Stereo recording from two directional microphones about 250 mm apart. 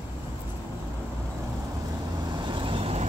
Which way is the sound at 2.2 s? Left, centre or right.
Centre.